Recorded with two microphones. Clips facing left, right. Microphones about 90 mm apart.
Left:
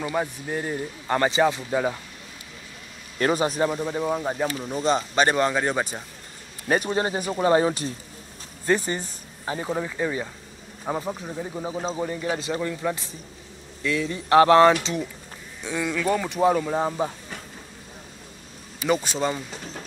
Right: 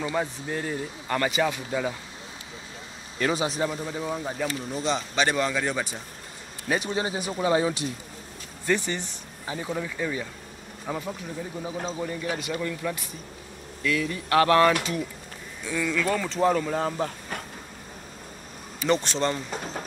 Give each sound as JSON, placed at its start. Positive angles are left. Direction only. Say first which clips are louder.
{"t": 0.1, "sound": "speech", "louder": "left 2 dB", "side_deg": 15}
{"t": 3.2, "sound": "speech", "louder": "left 4 dB", "side_deg": 45}
{"t": 18.9, "sound": "speech", "louder": "left 1 dB", "side_deg": 10}
{"t": 19.5, "sound": "speech", "louder": "right 4 dB", "side_deg": -45}